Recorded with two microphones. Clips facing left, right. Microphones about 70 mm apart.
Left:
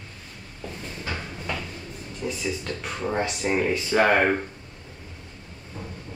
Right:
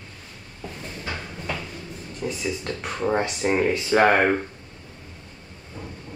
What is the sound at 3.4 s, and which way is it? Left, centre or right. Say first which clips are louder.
Speech: right 2 dB; centre.